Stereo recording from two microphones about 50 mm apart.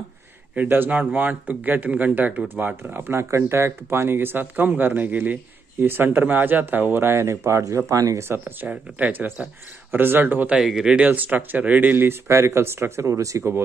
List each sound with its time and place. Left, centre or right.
0.7 s speech: right
2.8 s speech: right
3.2 s speech: right
8.6 s speech: right
9.8 s speech: right
10.6 s speech: centre
11.1 s speech: right
12.3 s speech: right